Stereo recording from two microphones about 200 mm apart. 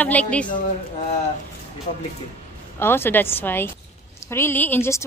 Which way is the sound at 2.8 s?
10° left (ahead or behind).